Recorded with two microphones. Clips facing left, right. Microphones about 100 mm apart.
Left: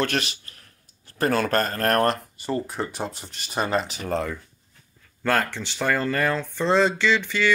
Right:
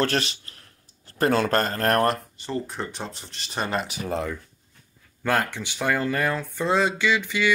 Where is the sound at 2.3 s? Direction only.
10° left (ahead or behind).